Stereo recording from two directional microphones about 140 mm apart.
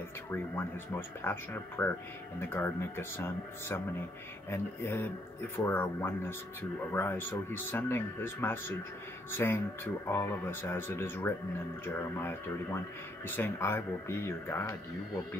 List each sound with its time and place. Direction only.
0.3 s speech: 15° left (ahead or behind)